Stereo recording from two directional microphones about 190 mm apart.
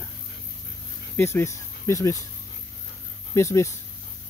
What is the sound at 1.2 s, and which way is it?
Speech, 15° left (ahead or behind).